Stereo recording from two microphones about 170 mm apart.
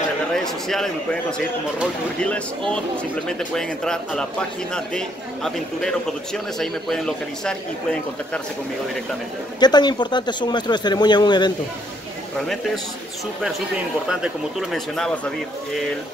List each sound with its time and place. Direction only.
0.4 s speech: centre (ahead or behind)
2.1 s speech: 5° left (ahead or behind)
9.6 s speech: 25° left (ahead or behind)
14.0 s speech: 5° right (ahead or behind)